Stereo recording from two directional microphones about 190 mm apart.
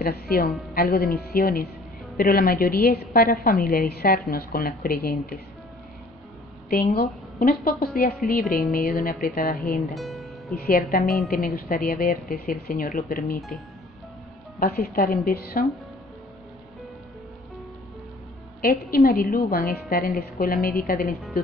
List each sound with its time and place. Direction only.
0.0 s a woman's voice: 55° left (ahead or behind)
6.7 s a woman's voice: 50° left (ahead or behind)
9.9 s speech: centre (ahead or behind)
10.5 s a woman's voice: 50° left (ahead or behind)
14.6 s a woman's voice: 50° left (ahead or behind)
18.6 s a woman's voice: 50° left (ahead or behind)